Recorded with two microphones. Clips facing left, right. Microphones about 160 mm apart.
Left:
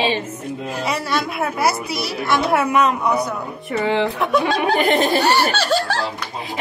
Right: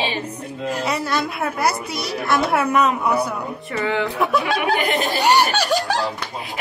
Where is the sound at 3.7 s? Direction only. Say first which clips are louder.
Left 3 dB; 25° left (ahead or behind).